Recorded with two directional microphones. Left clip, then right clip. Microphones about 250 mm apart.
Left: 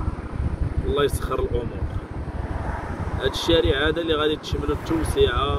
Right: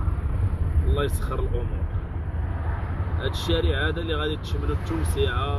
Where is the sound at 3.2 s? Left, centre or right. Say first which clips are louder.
Left 7 dB; centre.